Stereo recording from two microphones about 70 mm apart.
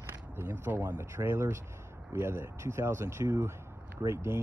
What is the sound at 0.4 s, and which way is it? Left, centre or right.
Speech, right.